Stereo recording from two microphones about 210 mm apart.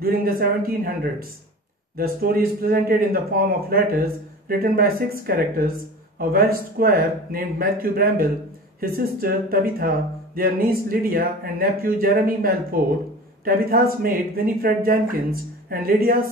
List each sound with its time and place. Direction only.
0.0 s speech: 45° right (ahead or behind)
2.0 s speech: 45° right (ahead or behind)